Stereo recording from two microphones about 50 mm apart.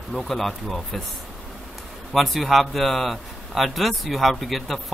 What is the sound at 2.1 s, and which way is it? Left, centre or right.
A man's voice, centre.